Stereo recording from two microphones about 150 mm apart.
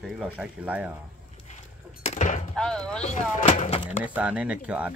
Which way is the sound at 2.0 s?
50° left (ahead or behind).